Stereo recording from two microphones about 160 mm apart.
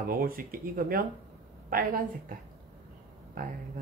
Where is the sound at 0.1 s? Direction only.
65° right (ahead or behind).